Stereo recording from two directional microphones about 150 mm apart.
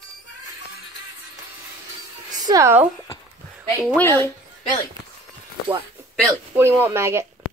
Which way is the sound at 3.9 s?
10° left (ahead or behind).